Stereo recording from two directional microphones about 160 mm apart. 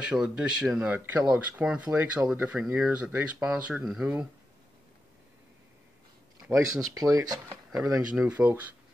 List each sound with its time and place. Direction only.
0.0 s speech: 5° right (ahead or behind)
6.4 s speech: 5° right (ahead or behind)
6.9 s speech: 20° right (ahead or behind)
8.3 s speech: 10° right (ahead or behind)